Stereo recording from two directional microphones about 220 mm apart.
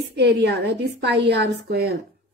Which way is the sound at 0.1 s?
50° right (ahead or behind).